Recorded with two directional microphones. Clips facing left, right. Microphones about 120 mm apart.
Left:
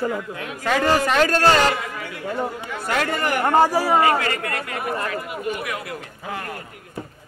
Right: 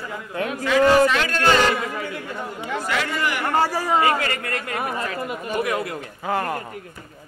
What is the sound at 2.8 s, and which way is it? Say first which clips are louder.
Speech: left 3 dB; 50° left (ahead or behind).